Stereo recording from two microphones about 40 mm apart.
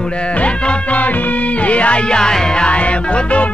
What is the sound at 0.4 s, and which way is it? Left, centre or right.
Music, left.